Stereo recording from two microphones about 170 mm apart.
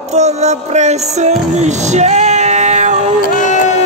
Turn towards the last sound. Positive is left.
turn(degrees=45)  # may be behind; listen again after turning